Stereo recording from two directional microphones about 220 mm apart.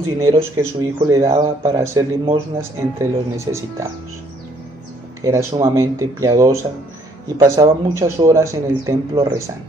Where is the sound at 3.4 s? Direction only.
10° right (ahead or behind).